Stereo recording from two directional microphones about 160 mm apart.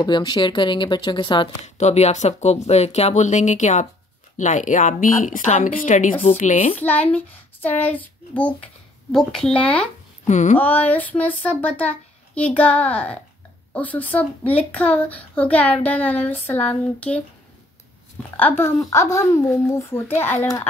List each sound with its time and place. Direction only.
0.0 s speech: 25° left (ahead or behind)
1.8 s speech: 45° left (ahead or behind)
6.8 s a child's voice: 10° left (ahead or behind)
10.2 s speech: 50° left (ahead or behind)
10.6 s a child's voice: 10° left (ahead or behind)
18.3 s a child's voice: 10° left (ahead or behind)